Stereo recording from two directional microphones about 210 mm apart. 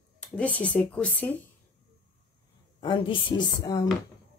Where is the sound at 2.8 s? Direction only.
25° left (ahead or behind).